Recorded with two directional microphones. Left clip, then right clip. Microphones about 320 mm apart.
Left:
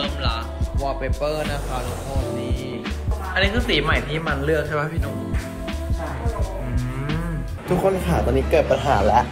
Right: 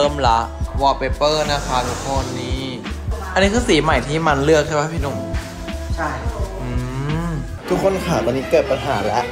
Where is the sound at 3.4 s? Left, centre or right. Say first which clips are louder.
Right 5 dB; right.